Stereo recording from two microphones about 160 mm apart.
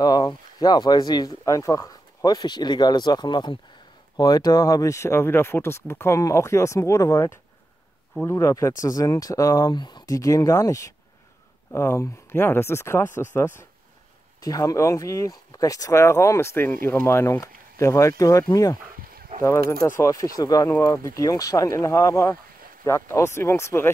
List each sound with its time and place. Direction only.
0.0 s speech: 25° left (ahead or behind)
20.0 s speech: 20° left (ahead or behind)